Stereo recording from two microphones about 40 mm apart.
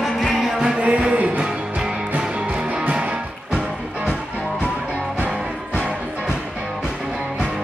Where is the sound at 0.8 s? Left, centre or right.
Right.